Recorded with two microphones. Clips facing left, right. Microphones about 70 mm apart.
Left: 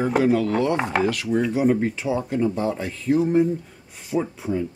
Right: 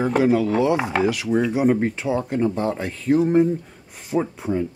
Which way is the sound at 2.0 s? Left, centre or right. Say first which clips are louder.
Right 1 dB; centre.